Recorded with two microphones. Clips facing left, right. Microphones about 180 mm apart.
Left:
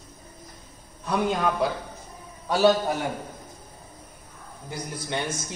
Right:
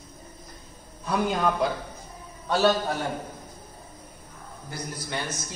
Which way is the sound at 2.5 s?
15° left (ahead or behind).